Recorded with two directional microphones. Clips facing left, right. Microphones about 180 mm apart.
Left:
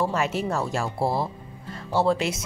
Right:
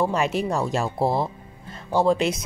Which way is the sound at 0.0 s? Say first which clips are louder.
Right 2 dB; 15° right (ahead or behind).